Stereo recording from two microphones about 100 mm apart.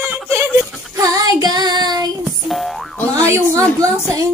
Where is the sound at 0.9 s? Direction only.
40° right (ahead or behind).